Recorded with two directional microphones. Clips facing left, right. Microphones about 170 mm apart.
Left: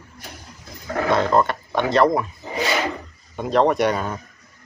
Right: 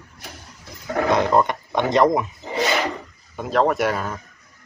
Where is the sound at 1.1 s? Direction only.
15° right (ahead or behind).